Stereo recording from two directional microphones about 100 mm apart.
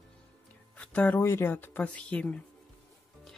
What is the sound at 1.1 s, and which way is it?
Speech, 25° left (ahead or behind).